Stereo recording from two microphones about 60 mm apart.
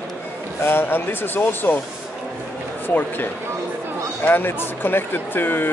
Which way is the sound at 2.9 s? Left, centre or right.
Left.